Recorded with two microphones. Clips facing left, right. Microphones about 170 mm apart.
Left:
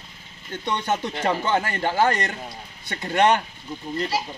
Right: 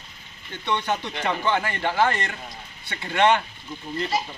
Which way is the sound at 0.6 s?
45° left (ahead or behind).